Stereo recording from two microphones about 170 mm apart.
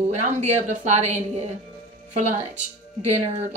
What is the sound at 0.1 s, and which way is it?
A woman's voice, 40° right (ahead or behind).